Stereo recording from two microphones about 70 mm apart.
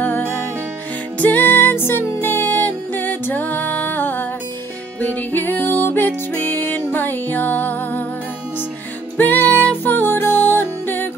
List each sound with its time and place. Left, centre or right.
0.0 s music: left
9.1 s music: left